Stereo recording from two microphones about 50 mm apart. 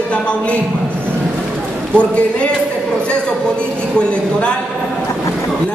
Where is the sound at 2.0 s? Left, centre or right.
Left.